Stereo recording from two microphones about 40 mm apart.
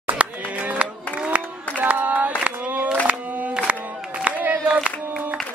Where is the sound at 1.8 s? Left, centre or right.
Right.